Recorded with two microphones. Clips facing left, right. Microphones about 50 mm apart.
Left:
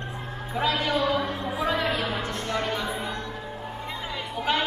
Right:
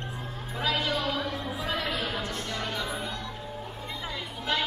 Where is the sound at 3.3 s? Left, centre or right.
Left.